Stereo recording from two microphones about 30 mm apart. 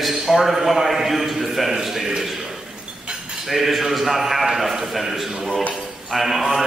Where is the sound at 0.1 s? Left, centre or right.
Centre.